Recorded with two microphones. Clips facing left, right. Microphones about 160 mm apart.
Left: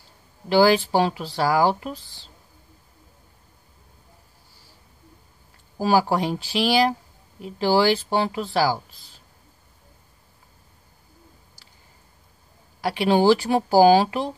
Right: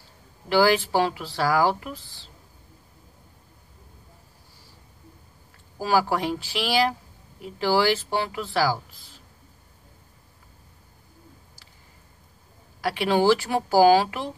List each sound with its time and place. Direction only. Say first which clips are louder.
0.5 s speech: left 3 dB; 20° left (ahead or behind)
5.8 s speech: left 3 dB; 25° left (ahead or behind)
12.8 s speech: left 3 dB; 20° left (ahead or behind)